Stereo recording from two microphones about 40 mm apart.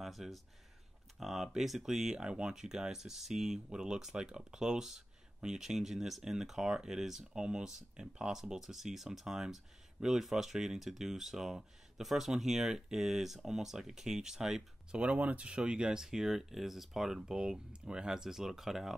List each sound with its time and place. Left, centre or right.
0.0 s speech: centre
2.1 s speech: right
14.9 s speech: right; by 18.9 s centre